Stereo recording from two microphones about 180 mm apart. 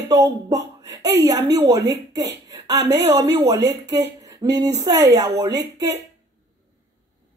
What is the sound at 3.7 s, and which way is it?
A woman's voice, 20° right (ahead or behind).